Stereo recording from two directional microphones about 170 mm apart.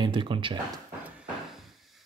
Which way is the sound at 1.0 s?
5° right (ahead or behind).